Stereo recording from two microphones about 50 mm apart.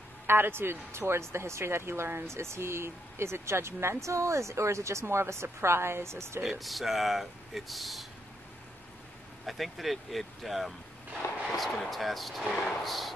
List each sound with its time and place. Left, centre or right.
0.3 s speech: right
4.0 s speech: right
6.6 s speech: centre
9.5 s speech: centre